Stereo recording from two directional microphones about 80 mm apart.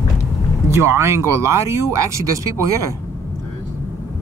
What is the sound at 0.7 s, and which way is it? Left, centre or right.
Speech, right.